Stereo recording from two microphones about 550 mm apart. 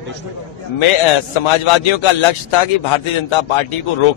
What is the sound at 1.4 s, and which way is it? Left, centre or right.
Speech, left.